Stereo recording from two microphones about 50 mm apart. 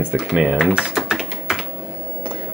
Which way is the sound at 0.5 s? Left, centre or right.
Centre.